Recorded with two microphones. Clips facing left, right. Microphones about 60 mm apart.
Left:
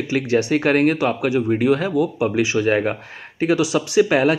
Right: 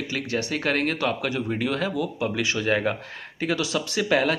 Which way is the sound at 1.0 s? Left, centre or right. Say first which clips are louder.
Left 6 dB; centre.